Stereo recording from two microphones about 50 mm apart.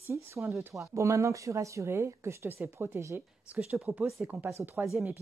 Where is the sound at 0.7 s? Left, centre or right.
Right.